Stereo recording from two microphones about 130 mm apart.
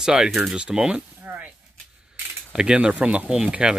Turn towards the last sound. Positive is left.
turn(degrees=-5)  # may be behind; listen again after turning